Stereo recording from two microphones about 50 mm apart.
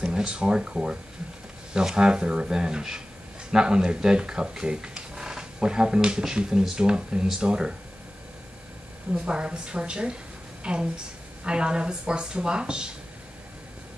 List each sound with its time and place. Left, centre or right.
0.0 s speech: centre
9.1 s a woman's voice: right